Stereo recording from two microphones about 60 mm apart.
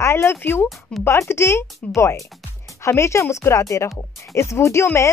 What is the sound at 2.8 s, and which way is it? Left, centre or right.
Speech, left.